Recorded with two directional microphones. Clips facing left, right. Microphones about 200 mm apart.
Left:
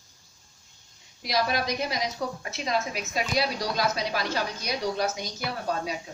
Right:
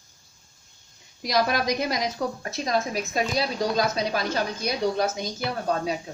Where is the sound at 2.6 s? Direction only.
45° right (ahead or behind).